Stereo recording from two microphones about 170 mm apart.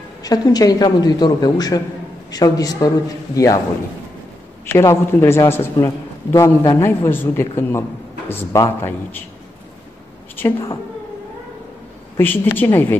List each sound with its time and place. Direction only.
0.2 s speech: 20° left (ahead or behind)
4.7 s a man's voice: 15° left (ahead or behind)
12.2 s a man's voice: 10° left (ahead or behind)